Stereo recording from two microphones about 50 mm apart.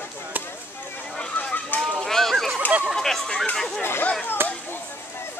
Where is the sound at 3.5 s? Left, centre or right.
Centre.